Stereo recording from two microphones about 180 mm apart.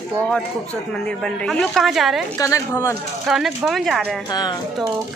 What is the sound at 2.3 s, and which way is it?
Speech, 15° left (ahead or behind).